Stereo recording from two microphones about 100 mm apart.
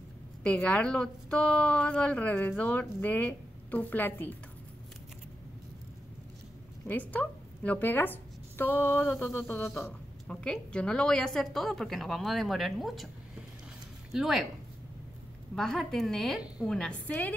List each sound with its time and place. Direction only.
0.4 s a woman's voice: 10° left (ahead or behind)
6.9 s a woman's voice: 15° left (ahead or behind)
10.2 s a woman's voice: 5° left (ahead or behind)
14.1 s a woman's voice: centre (ahead or behind)
15.5 s a woman's voice: 5° left (ahead or behind)